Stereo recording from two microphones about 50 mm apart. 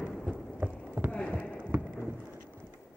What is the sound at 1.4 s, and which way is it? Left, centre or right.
Run, left.